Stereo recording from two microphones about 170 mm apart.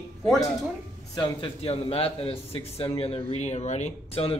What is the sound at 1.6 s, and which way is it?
Speech, 35° left (ahead or behind).